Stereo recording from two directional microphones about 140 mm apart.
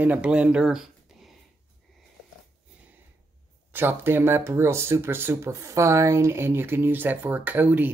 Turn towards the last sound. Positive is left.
turn(degrees=-10)  # may be behind; listen again after turning